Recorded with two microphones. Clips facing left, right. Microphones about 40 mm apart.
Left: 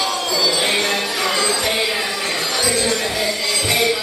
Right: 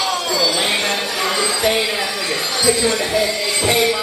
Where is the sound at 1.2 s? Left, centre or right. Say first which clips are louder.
Right 3 dB; centre.